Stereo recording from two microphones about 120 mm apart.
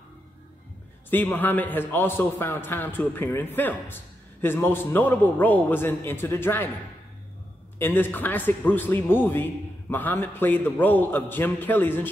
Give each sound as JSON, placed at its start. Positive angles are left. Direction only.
{"t": 1.1, "sound": "a man's voice", "side_deg": 15}
{"t": 7.8, "sound": "a man's voice", "side_deg": 15}